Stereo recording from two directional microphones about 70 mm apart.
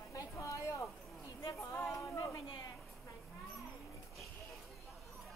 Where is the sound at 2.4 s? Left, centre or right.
Left.